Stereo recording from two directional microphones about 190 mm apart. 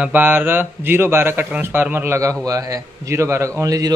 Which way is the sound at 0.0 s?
10° right (ahead or behind).